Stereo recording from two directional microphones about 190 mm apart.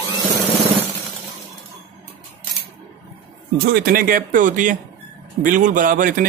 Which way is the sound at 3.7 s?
55° right (ahead or behind).